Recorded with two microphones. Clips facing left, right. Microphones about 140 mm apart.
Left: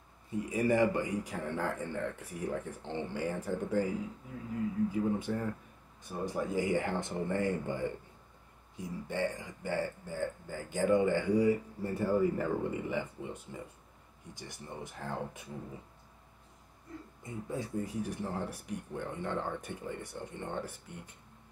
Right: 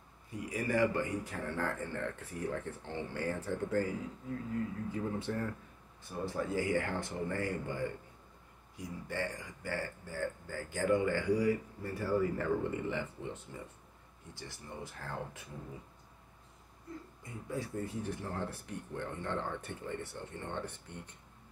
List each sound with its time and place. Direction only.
0.3 s speech: 25° left (ahead or behind)
4.9 s speech: 10° left (ahead or behind)
17.2 s speech: 20° left (ahead or behind)